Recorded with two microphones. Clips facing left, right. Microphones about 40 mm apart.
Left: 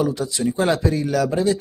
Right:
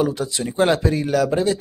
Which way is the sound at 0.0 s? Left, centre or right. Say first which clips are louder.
Even; right.